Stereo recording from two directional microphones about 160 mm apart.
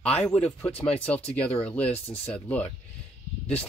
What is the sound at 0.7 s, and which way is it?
Speech, 40° left (ahead or behind).